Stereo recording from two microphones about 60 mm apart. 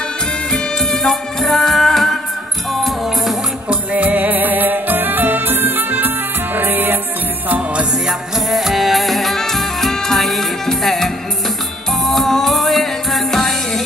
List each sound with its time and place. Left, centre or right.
0.5 s music: centre
3.6 s music: right
8.5 s music: centre
12.1 s music: centre